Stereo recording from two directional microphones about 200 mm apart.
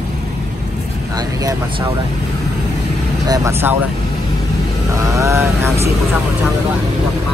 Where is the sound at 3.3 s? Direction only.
15° right (ahead or behind).